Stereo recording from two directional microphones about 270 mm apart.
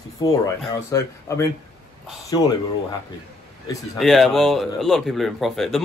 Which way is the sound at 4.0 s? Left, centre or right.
Centre.